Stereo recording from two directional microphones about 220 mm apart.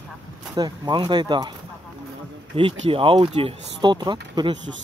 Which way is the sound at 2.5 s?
25° right (ahead or behind).